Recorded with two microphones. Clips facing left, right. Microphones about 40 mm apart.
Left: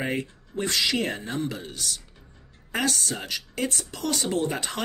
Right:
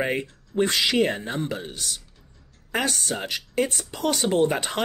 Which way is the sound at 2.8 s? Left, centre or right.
Right.